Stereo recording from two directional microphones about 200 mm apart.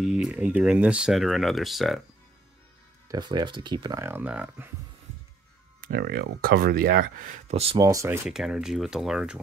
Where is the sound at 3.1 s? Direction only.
20° right (ahead or behind).